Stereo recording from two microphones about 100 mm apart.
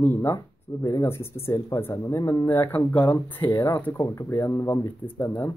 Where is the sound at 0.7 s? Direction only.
35° left (ahead or behind).